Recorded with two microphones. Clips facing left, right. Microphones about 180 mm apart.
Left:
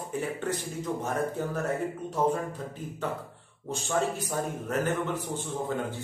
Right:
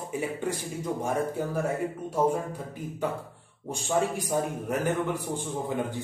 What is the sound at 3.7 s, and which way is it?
Speech, 15° right (ahead or behind).